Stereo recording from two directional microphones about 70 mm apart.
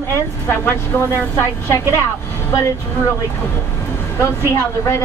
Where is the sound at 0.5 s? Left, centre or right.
Left.